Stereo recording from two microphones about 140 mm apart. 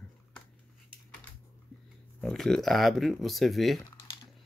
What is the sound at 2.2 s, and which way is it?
Speech, 5° left (ahead or behind).